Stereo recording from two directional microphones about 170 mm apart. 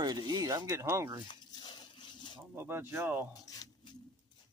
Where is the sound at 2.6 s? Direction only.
15° right (ahead or behind).